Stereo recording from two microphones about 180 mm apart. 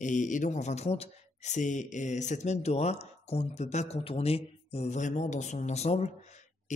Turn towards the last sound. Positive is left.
turn(degrees=40)  # may be behind; listen again after turning